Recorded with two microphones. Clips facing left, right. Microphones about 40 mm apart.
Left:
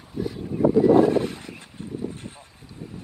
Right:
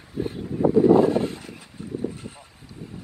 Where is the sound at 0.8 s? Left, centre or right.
Left.